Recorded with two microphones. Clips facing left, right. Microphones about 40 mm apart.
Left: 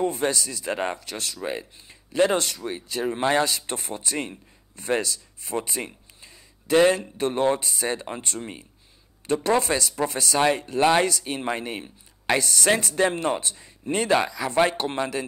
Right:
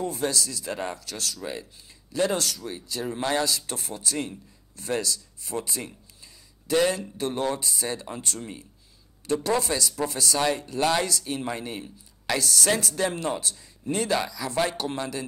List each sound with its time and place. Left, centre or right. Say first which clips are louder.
0.0 s speech: left 3 dB; left